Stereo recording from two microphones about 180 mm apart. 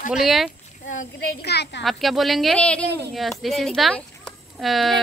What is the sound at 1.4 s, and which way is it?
Speech, 65° left (ahead or behind).